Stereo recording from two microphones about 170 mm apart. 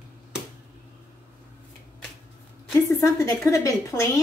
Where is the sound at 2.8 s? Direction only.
20° left (ahead or behind).